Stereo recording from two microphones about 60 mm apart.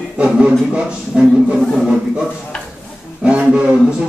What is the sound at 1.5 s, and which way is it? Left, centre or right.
Music, centre.